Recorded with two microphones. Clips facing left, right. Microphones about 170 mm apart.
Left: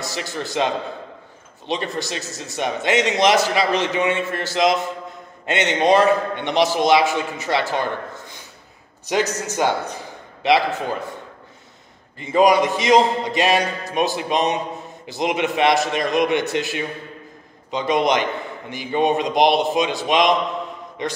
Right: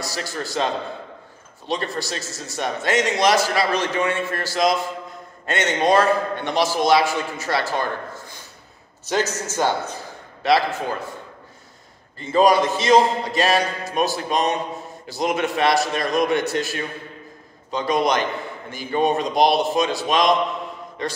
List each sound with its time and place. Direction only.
0.0 s a man's voice: 20° left (ahead or behind)
1.7 s a man's voice: 20° left (ahead or behind)
12.2 s a man's voice: 15° left (ahead or behind)